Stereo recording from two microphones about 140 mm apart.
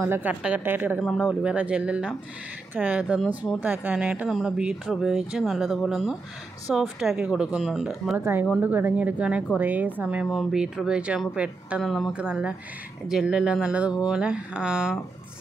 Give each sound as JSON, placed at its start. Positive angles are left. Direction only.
{"t": 0.0, "sound": "speech", "side_deg": -10}
{"t": 1.0, "sound": "speech", "side_deg": 0}
{"t": 8.2, "sound": "speech", "side_deg": -15}